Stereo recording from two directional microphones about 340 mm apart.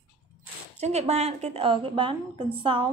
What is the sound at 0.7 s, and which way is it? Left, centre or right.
A woman's voice, centre.